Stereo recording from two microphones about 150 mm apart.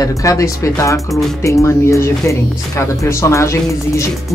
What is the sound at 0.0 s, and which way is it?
Speech, 25° left (ahead or behind).